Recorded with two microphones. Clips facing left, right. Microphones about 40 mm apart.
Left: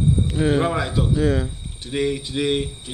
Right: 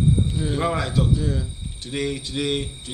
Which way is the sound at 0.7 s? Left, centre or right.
Centre.